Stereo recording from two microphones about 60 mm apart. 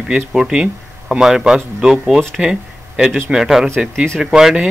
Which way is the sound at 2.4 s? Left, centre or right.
Centre.